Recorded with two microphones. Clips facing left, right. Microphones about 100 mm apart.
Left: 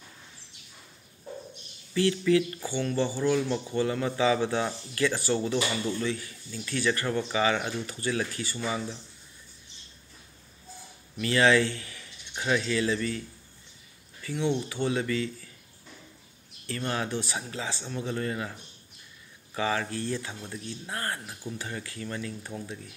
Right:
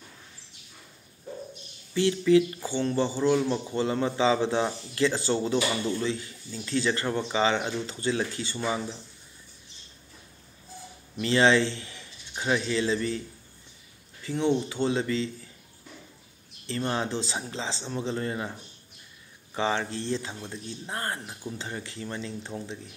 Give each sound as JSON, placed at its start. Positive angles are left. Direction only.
{"t": 2.0, "sound": "speech", "side_deg": -20}
{"t": 11.1, "sound": "speech", "side_deg": -25}
{"t": 14.2, "sound": "speech", "side_deg": -30}
{"t": 16.6, "sound": "speech", "side_deg": -25}